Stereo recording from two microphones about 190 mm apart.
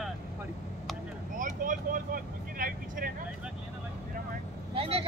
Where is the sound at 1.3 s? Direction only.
45° right (ahead or behind).